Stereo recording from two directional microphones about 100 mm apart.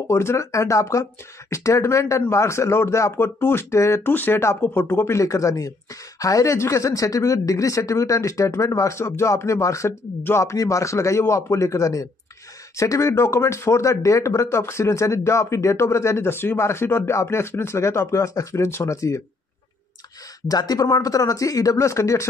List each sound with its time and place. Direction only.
0.1 s speech: 30° left (ahead or behind)
20.4 s speech: 40° left (ahead or behind)